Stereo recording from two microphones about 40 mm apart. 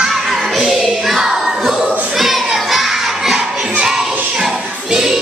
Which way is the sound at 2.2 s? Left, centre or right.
Centre.